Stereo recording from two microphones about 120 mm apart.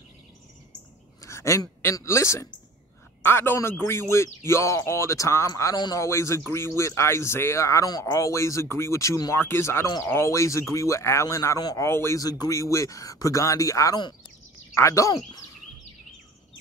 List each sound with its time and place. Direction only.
1.2 s speech: 25° left (ahead or behind)